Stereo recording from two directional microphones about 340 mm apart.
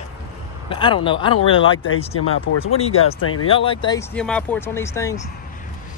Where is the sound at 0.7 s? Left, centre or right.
Centre.